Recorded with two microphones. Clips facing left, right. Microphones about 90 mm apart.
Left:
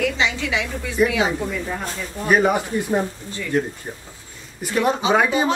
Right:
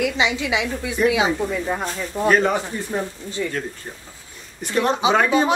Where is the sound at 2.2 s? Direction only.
10° left (ahead or behind).